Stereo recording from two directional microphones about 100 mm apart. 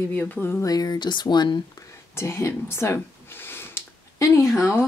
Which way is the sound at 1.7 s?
25° left (ahead or behind).